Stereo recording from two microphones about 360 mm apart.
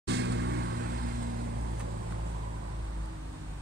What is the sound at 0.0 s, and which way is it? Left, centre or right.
Vehicle, right.